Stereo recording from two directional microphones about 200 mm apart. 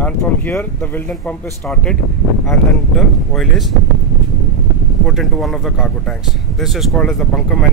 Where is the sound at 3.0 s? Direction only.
Centre (ahead or behind).